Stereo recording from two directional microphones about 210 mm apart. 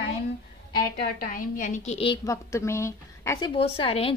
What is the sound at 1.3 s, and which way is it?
A woman's voice, 40° left (ahead or behind).